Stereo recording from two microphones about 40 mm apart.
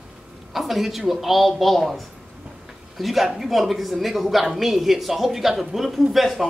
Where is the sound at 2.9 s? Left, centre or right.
Centre.